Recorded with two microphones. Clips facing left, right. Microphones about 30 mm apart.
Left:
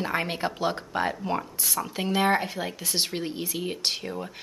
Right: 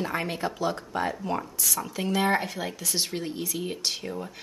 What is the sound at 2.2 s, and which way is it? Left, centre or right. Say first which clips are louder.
Speech: left 1 dB; centre.